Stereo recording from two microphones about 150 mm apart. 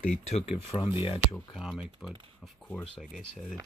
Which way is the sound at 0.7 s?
35° left (ahead or behind).